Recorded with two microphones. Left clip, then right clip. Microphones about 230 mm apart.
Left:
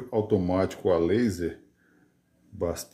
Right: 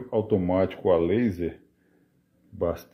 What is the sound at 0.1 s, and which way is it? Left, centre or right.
Speech, centre.